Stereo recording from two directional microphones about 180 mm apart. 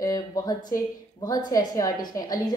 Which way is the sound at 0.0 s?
20° left (ahead or behind).